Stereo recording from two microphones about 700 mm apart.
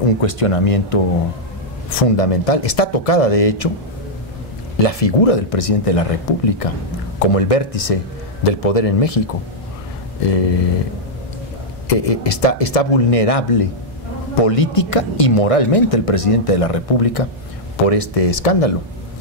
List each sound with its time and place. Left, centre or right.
0.2 s speech: left
4.7 s speech: left
10.2 s speech: left
11.9 s speech: left